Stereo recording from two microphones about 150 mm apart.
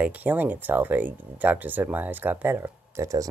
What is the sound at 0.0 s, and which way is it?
Speech, 10° right (ahead or behind).